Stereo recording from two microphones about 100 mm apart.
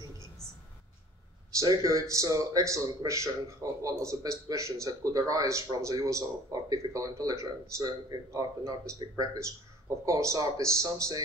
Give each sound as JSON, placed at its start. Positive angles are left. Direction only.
{"t": 1.6, "sound": "speech", "side_deg": -35}